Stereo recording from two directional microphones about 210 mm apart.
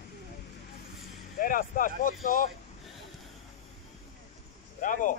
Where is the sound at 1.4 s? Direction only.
40° left (ahead or behind).